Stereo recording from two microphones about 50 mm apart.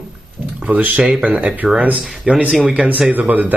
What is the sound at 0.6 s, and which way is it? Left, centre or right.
Speech, right.